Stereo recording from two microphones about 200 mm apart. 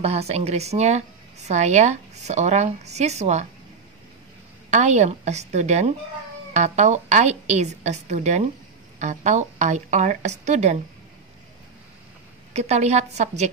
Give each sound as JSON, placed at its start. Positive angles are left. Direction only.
{"t": 0.0, "sound": "speech", "side_deg": -30}
{"t": 4.6, "sound": "speech", "side_deg": -35}
{"t": 12.5, "sound": "speech", "side_deg": -35}